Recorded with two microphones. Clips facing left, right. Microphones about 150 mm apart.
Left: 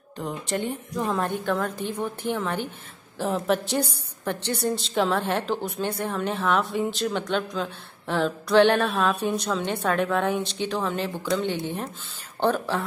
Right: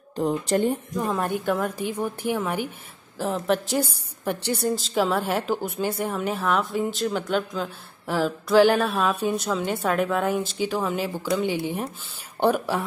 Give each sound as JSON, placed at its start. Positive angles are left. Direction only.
{"t": 0.2, "sound": "speech", "side_deg": -40}
{"t": 0.9, "sound": "a woman's voice", "side_deg": 0}